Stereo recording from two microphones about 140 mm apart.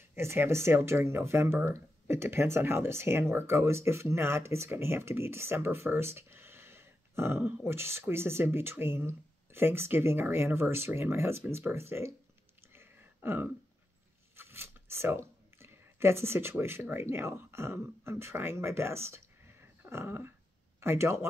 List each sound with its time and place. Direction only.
0.0 s speech: 15° right (ahead or behind)
12.7 s a sound: 15° right (ahead or behind)
14.3 s speech: 15° right (ahead or behind)